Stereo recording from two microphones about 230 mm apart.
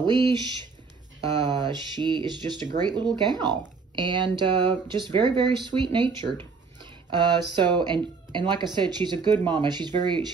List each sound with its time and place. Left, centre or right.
0.0 s speech: centre
6.8 s a sound: centre
7.5 s speech: centre